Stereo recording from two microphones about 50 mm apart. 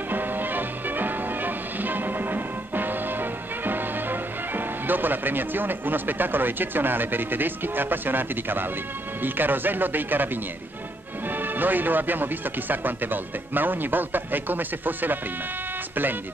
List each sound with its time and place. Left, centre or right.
0.1 s music: right
9.2 s speech: right